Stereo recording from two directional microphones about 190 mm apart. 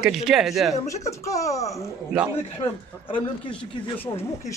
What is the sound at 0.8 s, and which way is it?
Speech, 15° left (ahead or behind).